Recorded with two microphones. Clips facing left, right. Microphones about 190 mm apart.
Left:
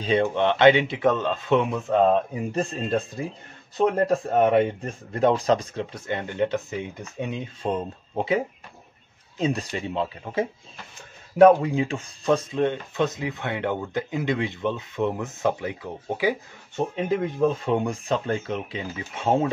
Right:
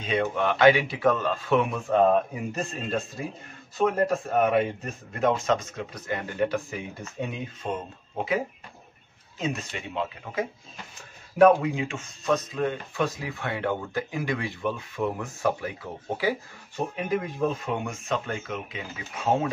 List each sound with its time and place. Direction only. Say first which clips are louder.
0.0 s speech: left 4 dB; 30° left (ahead or behind)
3.7 s speech: left 3 dB; 30° left (ahead or behind)
7.6 s speech: left 6 dB; 30° left (ahead or behind)
9.4 s speech: left 5 dB; 35° left (ahead or behind)
17.6 s speech: left 6 dB; 30° left (ahead or behind)